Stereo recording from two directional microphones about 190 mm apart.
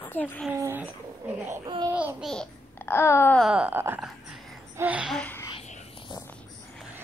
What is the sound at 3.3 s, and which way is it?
Speech, 5° right (ahead or behind).